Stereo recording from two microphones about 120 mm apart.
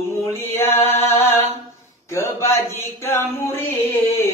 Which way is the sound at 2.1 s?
25° left (ahead or behind).